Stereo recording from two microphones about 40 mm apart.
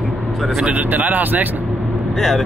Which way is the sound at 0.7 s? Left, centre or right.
Right.